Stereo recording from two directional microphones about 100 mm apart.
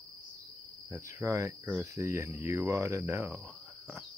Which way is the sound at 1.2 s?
30° right (ahead or behind).